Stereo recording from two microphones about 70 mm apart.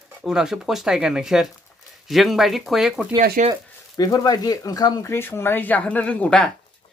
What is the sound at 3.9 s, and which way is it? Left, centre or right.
Speech, left.